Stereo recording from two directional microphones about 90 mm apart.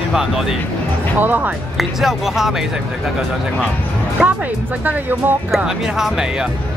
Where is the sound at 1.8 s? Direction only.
5° right (ahead or behind).